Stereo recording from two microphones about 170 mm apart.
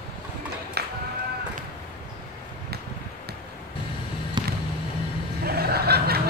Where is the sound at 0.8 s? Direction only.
70° right (ahead or behind).